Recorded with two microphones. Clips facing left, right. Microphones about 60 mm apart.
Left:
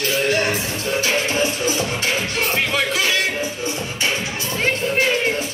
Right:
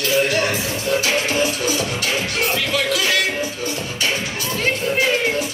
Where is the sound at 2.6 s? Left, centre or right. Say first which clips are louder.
Even; left.